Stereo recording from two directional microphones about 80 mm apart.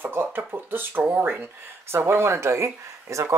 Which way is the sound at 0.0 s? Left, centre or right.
Right.